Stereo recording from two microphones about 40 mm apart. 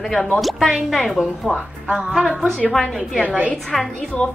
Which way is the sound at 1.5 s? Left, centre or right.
Centre.